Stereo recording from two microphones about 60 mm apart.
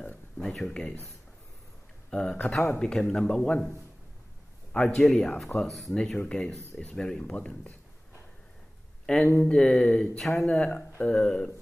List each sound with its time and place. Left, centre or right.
0.4 s a sound: centre
0.7 s speech: centre
2.0 s speech: centre
4.7 s speech: centre
5.0 s speech: centre
6.1 s speech: centre
9.0 s speech: centre
9.4 s speech: centre